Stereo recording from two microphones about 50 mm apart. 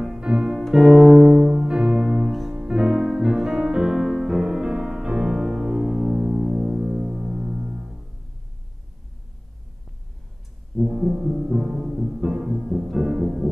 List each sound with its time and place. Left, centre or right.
0.2 s music: centre
0.5 s music: centre
2.5 s music: centre
4.4 s music: centre
5.3 s music: centre
10.9 s music: centre
12.4 s music: centre
12.9 s music: centre
13.2 s music: centre